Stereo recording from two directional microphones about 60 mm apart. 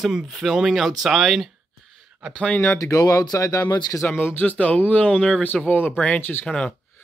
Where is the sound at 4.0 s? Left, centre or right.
Left; by 5.5 s centre.